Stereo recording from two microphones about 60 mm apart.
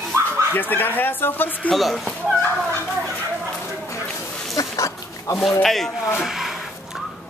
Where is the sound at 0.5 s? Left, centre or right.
Left.